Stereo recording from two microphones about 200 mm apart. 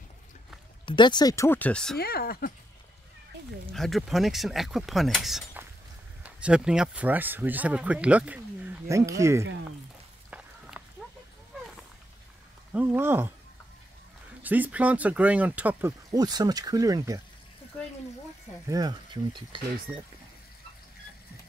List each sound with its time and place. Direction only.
0.8 s speech: 20° left (ahead or behind); by 2.0 s 5° left (ahead or behind)
2.0 s speech: 50° left (ahead or behind)
3.7 s speech: centre (ahead or behind)
10.3 s walk: 5° right (ahead or behind)
12.7 s speech: 10° right (ahead or behind)
14.4 s speech: 10° right (ahead or behind)
18.7 s speech: 20° right (ahead or behind)